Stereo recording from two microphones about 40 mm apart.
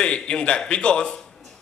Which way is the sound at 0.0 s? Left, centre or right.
Left.